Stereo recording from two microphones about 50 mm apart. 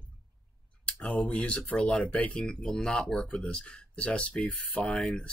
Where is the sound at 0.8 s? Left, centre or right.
Centre.